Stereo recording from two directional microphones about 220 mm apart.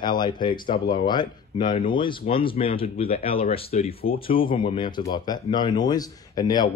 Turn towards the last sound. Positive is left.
turn(degrees=20)  # may be behind; listen again after turning